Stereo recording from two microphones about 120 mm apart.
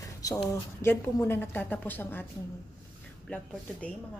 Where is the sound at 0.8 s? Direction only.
20° left (ahead or behind).